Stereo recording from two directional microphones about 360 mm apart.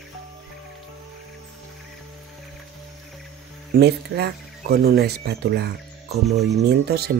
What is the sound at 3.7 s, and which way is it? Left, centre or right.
Speech, right.